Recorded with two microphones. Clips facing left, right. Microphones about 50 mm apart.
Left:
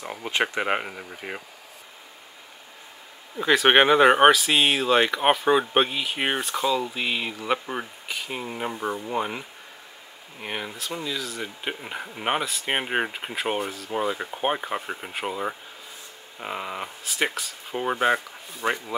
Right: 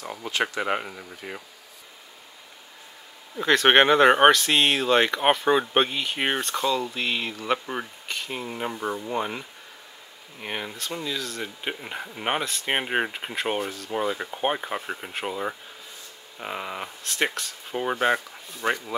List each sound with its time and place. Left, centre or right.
0.0 s speech: centre
3.3 s speech: centre